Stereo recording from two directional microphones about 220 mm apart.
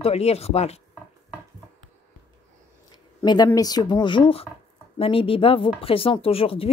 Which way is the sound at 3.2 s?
20° left (ahead or behind).